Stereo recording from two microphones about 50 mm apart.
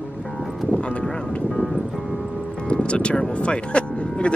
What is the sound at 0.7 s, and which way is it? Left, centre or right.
Speech, left.